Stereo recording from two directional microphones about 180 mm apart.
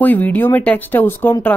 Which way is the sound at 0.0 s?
10° left (ahead or behind).